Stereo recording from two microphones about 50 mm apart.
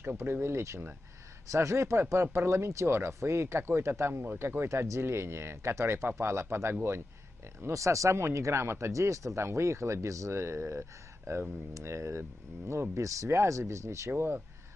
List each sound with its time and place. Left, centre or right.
0.2 s speech: right
1.5 s speech: right
4.1 s speech: right
4.4 s speech: right
4.6 s speech: right
5.0 s speech: right
7.6 s speech: right
12.9 s speech: right